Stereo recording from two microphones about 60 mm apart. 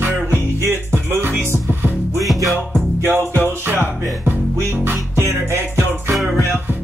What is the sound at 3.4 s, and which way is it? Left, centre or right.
Music, right.